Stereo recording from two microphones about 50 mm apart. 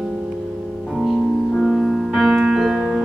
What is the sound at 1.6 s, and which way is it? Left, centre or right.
Music, centre.